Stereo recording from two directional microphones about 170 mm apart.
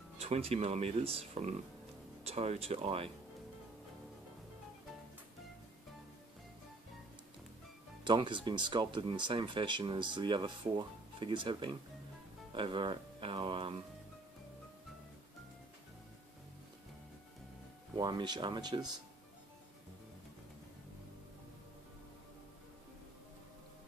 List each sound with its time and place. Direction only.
0.2 s speech: 40° right (ahead or behind)
8.0 s speech: 25° right (ahead or behind)
17.9 s speech: 25° right (ahead or behind)